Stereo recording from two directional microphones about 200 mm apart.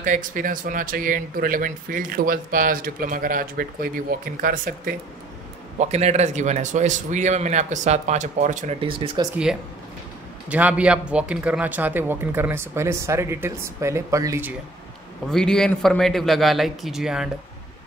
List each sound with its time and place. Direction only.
0.0 s speech: 40° right (ahead or behind)
5.8 s a man's voice: 35° right (ahead or behind)
8.8 s speech: 25° right (ahead or behind)
10.5 s speech: 5° right (ahead or behind)
15.2 s a man's voice: 5° left (ahead or behind)